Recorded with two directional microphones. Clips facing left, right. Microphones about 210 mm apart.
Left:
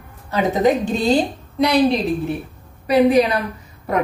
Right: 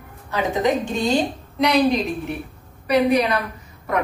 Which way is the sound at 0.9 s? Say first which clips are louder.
Left 3 dB; 35° left (ahead or behind).